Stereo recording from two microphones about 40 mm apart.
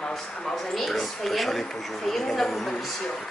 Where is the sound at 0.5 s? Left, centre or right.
Centre.